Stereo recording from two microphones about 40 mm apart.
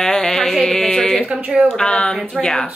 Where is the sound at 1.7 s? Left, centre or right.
Left.